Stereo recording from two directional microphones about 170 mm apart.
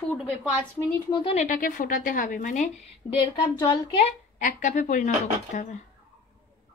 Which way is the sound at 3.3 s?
25° left (ahead or behind).